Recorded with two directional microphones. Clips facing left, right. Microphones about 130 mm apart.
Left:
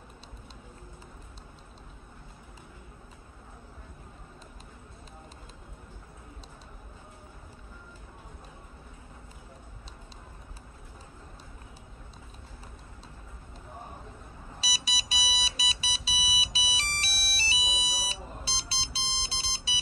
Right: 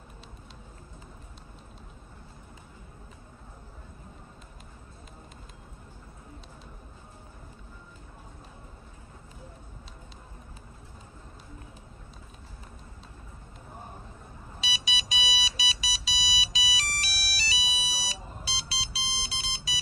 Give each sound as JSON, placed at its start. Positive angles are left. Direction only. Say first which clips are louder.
{"t": 14.6, "sound": "alarm clock", "louder": "right 2 dB", "side_deg": 35}